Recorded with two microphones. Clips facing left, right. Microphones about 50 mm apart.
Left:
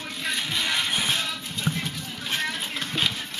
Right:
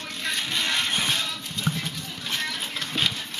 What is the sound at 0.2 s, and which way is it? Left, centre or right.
Music, centre.